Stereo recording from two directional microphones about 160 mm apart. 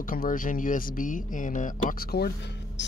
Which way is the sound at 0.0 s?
60° left (ahead or behind).